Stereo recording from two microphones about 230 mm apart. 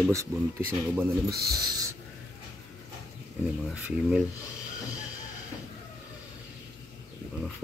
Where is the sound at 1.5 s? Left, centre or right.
Centre.